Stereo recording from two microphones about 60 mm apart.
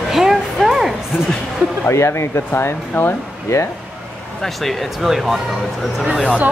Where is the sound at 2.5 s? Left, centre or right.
Left.